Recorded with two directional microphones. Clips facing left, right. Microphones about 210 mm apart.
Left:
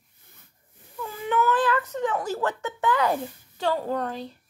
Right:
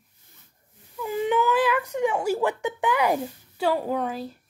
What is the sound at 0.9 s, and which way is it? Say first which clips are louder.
Whimper: right 3 dB; 15° right (ahead or behind).